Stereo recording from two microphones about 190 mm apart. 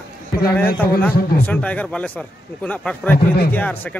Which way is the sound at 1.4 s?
5° left (ahead or behind).